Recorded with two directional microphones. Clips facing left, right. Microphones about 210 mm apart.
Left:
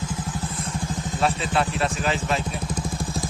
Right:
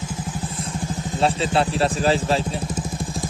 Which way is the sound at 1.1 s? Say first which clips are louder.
Right 3 dB; 30° right (ahead or behind).